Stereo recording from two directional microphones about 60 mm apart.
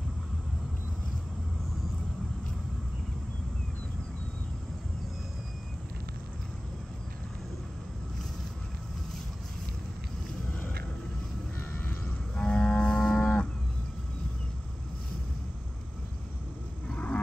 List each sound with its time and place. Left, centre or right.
12.4 s livestock: centre
13.0 s cattle: centre
16.9 s wild animals: left